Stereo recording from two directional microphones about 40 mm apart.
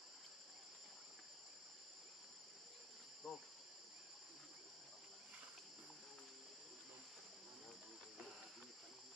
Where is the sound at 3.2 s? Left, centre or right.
Centre.